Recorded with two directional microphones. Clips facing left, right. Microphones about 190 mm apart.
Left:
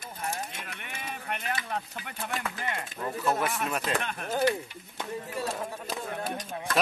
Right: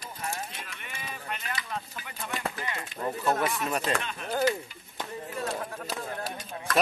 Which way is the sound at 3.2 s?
Centre (ahead or behind).